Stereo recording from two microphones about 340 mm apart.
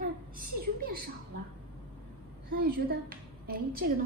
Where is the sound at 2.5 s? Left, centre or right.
Right.